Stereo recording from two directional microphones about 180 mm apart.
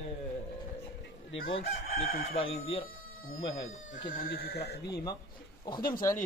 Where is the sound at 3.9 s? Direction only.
50° left (ahead or behind).